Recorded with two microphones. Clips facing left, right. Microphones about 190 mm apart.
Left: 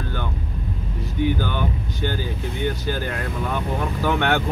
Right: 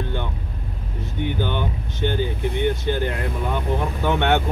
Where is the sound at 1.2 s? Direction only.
25° right (ahead or behind).